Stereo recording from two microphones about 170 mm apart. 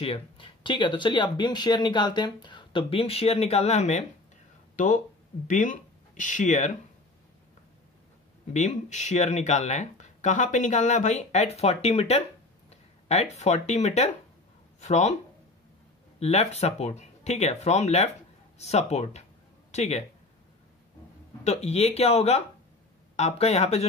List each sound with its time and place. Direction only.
0.0 s speech: 30° left (ahead or behind)
8.5 s speech: 45° left (ahead or behind)
16.2 s speech: 40° left (ahead or behind)
21.5 s speech: 40° left (ahead or behind)